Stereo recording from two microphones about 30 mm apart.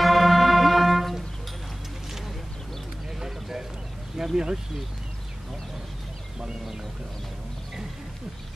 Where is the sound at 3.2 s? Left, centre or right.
Centre.